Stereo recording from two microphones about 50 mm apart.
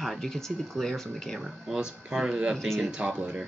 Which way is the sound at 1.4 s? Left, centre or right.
Centre.